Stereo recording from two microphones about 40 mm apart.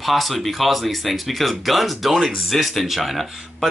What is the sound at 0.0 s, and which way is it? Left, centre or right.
Speech, centre.